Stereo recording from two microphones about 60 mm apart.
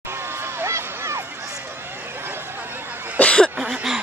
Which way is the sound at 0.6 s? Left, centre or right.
Right.